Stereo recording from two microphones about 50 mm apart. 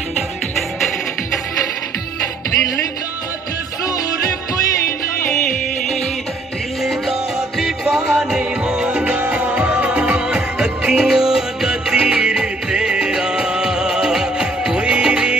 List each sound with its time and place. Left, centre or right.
6.8 s music: centre
8.9 s music: right